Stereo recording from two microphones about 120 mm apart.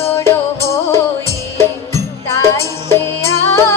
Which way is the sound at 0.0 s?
20° left (ahead or behind).